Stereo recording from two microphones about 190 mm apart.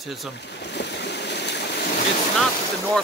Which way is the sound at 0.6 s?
65° left (ahead or behind).